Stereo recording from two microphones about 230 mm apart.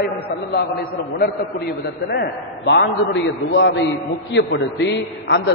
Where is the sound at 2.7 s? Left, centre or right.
Left.